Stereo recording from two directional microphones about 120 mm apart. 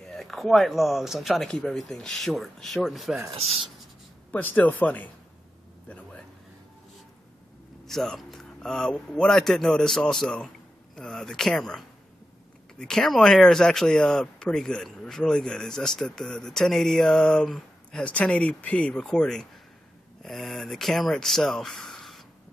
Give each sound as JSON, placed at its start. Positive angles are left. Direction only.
{"t": 0.0, "sound": "speech", "side_deg": 5}
{"t": 3.3, "sound": "speech", "side_deg": -60}
{"t": 4.3, "sound": "speech", "side_deg": 15}
{"t": 5.9, "sound": "a sound", "side_deg": 10}
{"t": 7.8, "sound": "speech", "side_deg": 5}